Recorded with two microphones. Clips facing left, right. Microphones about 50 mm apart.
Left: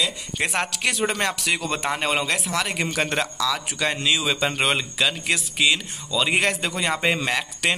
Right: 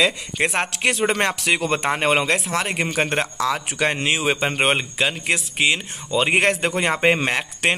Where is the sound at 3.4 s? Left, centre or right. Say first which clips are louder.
Right 3 dB; right.